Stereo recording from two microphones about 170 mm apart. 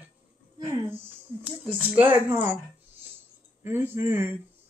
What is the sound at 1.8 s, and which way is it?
Cutlery, 10° right (ahead or behind).